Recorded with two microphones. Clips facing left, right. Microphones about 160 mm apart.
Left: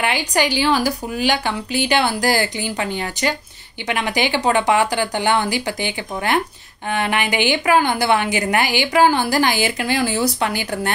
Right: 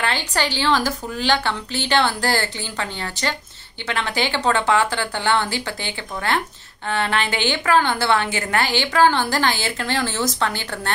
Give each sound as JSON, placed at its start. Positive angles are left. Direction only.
{"t": 0.0, "sound": "a woman's voice", "side_deg": 15}